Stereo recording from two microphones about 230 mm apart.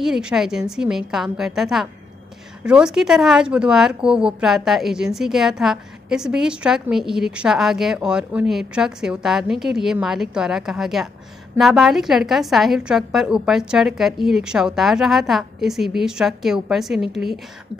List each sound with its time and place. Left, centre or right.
0.0 s speech: centre